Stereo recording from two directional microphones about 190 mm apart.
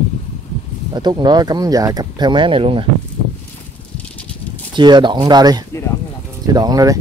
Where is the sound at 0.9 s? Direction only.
20° right (ahead or behind).